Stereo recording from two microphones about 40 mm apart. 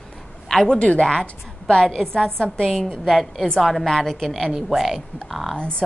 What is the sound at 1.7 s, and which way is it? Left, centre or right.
A woman's voice, centre.